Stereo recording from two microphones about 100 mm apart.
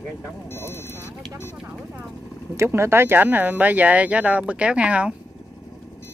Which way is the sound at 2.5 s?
25° right (ahead or behind).